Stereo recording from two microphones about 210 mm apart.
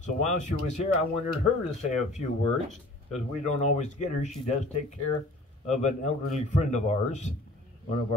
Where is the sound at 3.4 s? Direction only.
35° left (ahead or behind).